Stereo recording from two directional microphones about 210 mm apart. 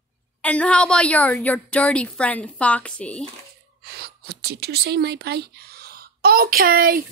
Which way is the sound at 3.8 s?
50° right (ahead or behind).